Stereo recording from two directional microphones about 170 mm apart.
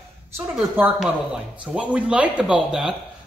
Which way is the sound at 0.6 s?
5° right (ahead or behind).